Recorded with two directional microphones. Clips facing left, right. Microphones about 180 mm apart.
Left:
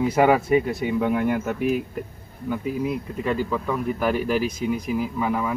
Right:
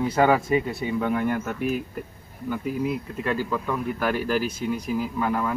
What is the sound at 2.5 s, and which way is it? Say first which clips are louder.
Speech: left 1 dB; centre (ahead or behind).